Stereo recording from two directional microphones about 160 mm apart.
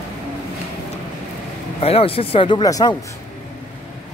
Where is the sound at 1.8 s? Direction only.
35° left (ahead or behind).